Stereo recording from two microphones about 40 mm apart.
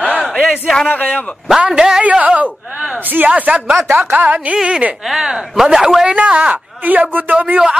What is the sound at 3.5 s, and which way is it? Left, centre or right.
Speech, right.